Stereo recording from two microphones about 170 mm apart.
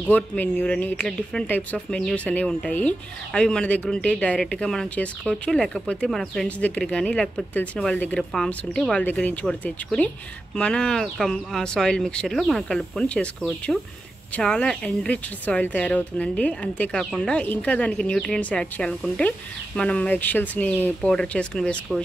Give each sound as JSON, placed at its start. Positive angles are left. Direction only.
{"t": 0.0, "sound": "speech", "side_deg": 10}